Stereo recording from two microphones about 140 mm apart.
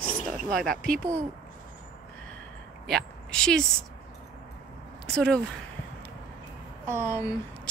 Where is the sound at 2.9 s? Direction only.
5° left (ahead or behind).